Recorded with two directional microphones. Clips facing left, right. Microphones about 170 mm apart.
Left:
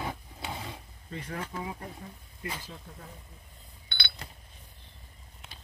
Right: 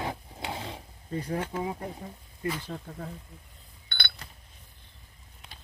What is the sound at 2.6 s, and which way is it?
Speech, 90° right.